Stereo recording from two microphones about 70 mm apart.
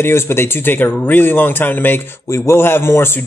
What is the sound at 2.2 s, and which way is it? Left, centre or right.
Speech, left.